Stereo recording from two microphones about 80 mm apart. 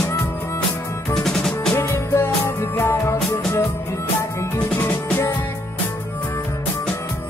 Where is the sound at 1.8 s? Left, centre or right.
Left.